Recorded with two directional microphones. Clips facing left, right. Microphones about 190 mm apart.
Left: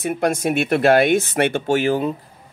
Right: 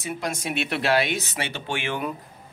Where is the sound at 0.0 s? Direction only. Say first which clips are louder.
Left 10 dB; 55° left (ahead or behind).